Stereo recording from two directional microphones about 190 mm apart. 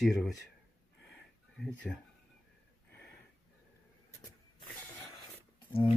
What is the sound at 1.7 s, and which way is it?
Speech, 5° left (ahead or behind).